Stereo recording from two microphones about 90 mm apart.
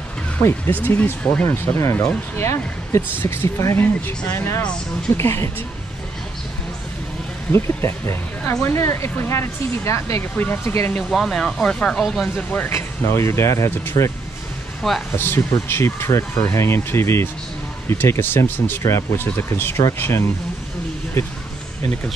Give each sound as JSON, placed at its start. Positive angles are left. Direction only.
{"t": 0.4, "sound": "speech", "side_deg": 25}
{"t": 1.4, "sound": "speech", "side_deg": 25}
{"t": 7.5, "sound": "speech", "side_deg": 30}
{"t": 11.1, "sound": "speech", "side_deg": 5}
{"t": 12.4, "sound": "speech", "side_deg": 20}
{"t": 12.7, "sound": "speech", "side_deg": 30}
{"t": 14.8, "sound": "speech", "side_deg": 0}
{"t": 15.1, "sound": "speech", "side_deg": 25}